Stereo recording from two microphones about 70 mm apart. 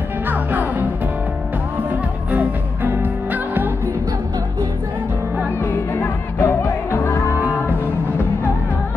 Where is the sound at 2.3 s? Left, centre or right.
Right.